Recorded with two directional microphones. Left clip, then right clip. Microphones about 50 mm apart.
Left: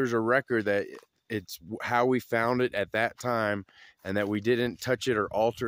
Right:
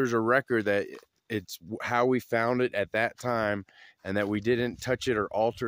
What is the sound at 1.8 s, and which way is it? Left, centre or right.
Speech, centre.